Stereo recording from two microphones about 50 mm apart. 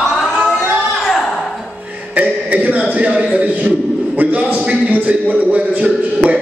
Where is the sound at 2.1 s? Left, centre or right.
Right.